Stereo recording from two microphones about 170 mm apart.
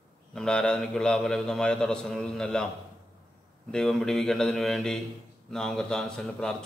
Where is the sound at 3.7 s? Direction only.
5° left (ahead or behind).